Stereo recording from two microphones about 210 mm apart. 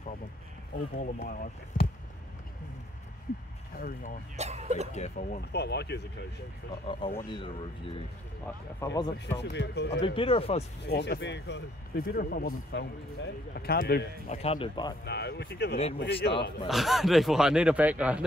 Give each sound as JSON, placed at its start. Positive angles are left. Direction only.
{"t": 0.9, "sound": "speech", "side_deg": 45}
{"t": 3.7, "sound": "speech", "side_deg": 40}
{"t": 4.4, "sound": "speech", "side_deg": -30}
{"t": 4.9, "sound": "speech", "side_deg": 35}
{"t": 5.5, "sound": "speech", "side_deg": 50}
{"t": 6.9, "sound": "speech", "side_deg": 20}
{"t": 9.4, "sound": "speech", "side_deg": 55}
{"t": 10.0, "sound": "speech", "side_deg": 25}
{"t": 10.9, "sound": "speech", "side_deg": 50}
{"t": 12.7, "sound": "speech", "side_deg": 50}
{"t": 14.3, "sound": "speech", "side_deg": 30}
{"t": 15.0, "sound": "speech", "side_deg": 50}
{"t": 16.6, "sound": "speech", "side_deg": 0}